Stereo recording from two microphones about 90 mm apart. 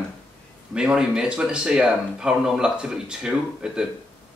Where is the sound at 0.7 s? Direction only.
10° right (ahead or behind).